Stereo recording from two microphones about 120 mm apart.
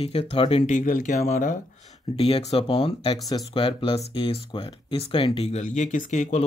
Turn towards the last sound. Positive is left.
turn(degrees=80)